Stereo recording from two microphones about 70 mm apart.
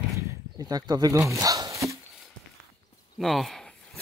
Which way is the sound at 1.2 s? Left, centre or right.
Right.